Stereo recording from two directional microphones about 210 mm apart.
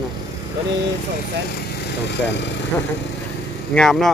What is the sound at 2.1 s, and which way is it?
Speech, 55° left (ahead or behind).